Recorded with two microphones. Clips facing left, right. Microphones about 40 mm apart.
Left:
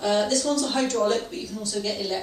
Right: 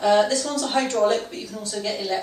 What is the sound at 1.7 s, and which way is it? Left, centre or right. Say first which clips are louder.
Speech: right 2 dB; centre.